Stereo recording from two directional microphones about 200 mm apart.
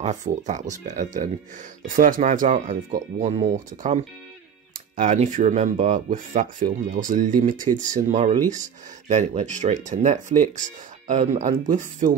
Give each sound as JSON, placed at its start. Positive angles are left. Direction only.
{"t": 0.0, "sound": "speech", "side_deg": -35}